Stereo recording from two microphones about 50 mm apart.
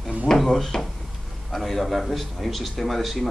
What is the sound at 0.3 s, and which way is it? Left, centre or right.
Speech, centre.